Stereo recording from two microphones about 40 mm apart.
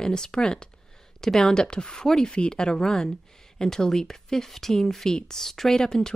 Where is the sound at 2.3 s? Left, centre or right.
Left.